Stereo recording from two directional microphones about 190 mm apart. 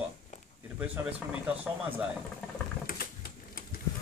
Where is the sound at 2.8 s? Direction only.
50° left (ahead or behind).